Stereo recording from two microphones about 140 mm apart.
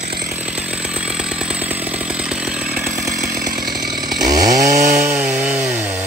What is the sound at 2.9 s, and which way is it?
Chainsaw, 75° right (ahead or behind).